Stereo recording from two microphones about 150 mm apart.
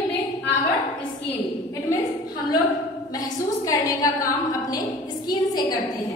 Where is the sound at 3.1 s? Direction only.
25° left (ahead or behind).